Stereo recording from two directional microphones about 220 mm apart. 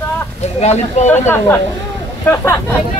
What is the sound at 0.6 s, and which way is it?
Speech, 30° left (ahead or behind).